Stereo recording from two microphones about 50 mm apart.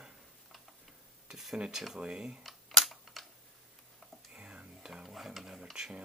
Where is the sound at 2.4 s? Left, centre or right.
Centre.